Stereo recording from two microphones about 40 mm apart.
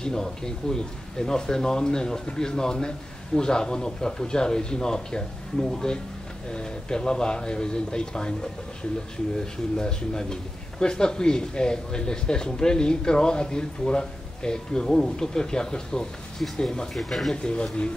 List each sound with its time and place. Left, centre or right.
0.0 s a man's voice: centre
9.8 s a man's voice: centre
16.9 s speech: centre
17.3 s a man's voice: left